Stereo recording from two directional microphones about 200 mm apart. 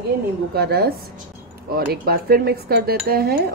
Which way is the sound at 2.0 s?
50° right (ahead or behind).